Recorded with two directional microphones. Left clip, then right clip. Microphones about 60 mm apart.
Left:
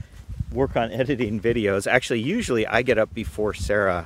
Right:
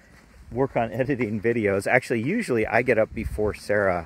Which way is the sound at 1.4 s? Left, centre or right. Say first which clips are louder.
Left 1 dB; left.